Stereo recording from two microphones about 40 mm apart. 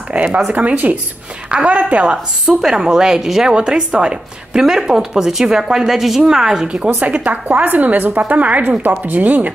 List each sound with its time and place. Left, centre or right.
0.1 s speech: right
2.4 s a woman's voice: centre
7.0 s speech: right
7.6 s speech: right
8.2 s speech: right